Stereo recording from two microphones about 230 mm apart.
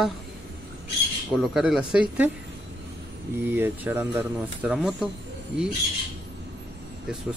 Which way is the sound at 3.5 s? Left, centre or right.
Centre.